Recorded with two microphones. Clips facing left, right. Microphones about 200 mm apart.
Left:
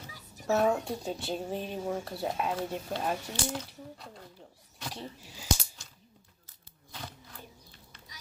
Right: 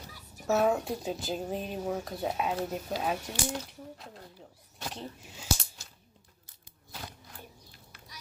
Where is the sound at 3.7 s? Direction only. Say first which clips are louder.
Even; centre (ahead or behind).